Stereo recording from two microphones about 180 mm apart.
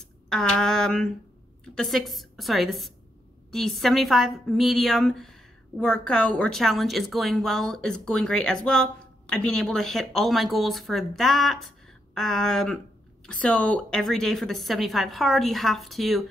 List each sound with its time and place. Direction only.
0.3 s a woman's voice: 5° left (ahead or behind)